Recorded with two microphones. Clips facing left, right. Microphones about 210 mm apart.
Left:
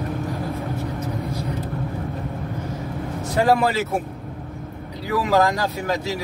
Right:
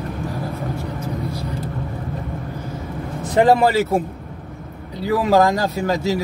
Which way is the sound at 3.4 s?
25° right (ahead or behind).